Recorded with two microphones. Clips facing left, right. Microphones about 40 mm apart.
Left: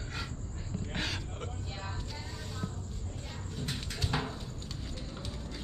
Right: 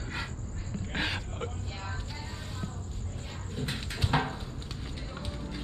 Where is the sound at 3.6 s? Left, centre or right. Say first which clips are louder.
Right 3 dB; right.